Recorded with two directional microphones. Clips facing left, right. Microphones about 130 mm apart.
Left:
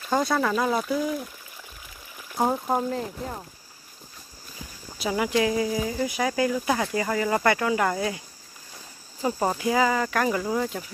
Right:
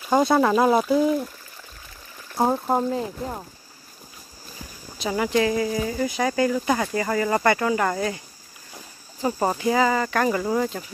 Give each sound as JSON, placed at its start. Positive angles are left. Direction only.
{"t": 0.0, "sound": "speech", "side_deg": -20}
{"t": 0.5, "sound": "speech", "side_deg": -40}
{"t": 2.3, "sound": "speech", "side_deg": -5}
{"t": 4.9, "sound": "speech", "side_deg": 5}
{"t": 9.2, "sound": "speech", "side_deg": -10}
{"t": 9.6, "sound": "speech", "side_deg": 5}